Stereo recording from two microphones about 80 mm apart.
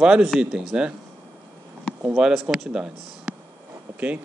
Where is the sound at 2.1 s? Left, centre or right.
Centre.